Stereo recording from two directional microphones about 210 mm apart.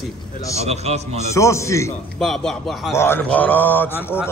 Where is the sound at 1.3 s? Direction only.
15° left (ahead or behind).